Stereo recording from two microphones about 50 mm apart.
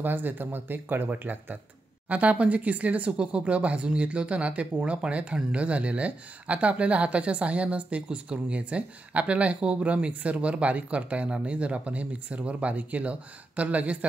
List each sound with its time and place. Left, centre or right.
0.0 s speech: right